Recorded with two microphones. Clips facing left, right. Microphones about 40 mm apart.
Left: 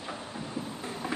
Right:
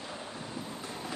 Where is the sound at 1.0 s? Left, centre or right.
Left.